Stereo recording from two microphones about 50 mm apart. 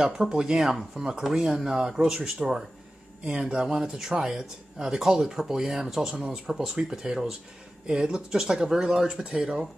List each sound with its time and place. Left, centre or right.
0.0 s speech: centre